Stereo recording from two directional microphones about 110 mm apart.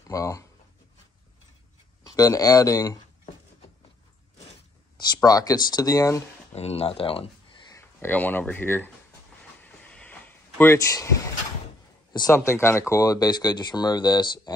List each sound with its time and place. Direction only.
0.1 s speech: 30° left (ahead or behind)
2.0 s speech: 30° left (ahead or behind)
4.9 s speech: 35° left (ahead or behind)
6.5 s speech: 70° left (ahead or behind)
7.7 s speech: 20° left (ahead or behind)
9.6 s a sound: 10° left (ahead or behind); by 11.1 s 25° left (ahead or behind)
12.1 s a man's voice: 40° left (ahead or behind)
12.4 s speech: 25° left (ahead or behind); by 14.5 s 40° left (ahead or behind)